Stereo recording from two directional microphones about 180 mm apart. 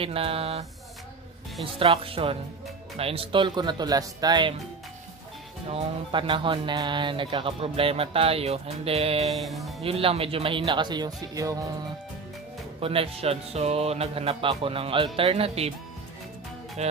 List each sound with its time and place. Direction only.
0.0 s speech: 30° right (ahead or behind)
5.7 s speech: 30° right (ahead or behind)
9.3 s music: centre (ahead or behind)
9.8 s speech: 30° right (ahead or behind)
12.8 s speech: 30° right (ahead or behind)